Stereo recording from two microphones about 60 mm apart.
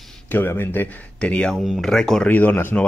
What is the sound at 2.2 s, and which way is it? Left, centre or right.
Speech, left.